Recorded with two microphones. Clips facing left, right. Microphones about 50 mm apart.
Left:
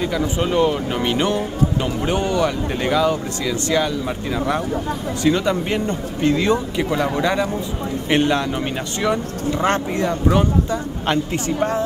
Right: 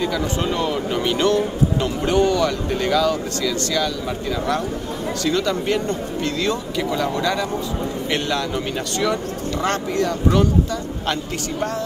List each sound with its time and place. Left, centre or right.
0.0 s speech: centre
5.2 s speech: left